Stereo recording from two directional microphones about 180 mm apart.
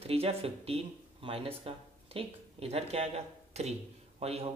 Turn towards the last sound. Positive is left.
turn(degrees=-35)  # may be behind; listen again after turning